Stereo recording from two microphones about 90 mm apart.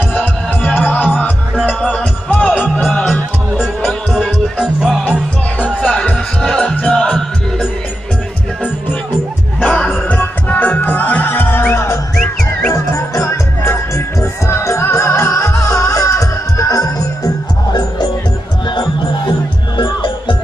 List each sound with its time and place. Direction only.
0.1 s music: 20° left (ahead or behind); by 5.0 s 5° right (ahead or behind)
5.8 s music: 15° left (ahead or behind)
9.6 s music: 15° left (ahead or behind); by 17.3 s 40° left (ahead or behind)
19.8 s music: 65° left (ahead or behind)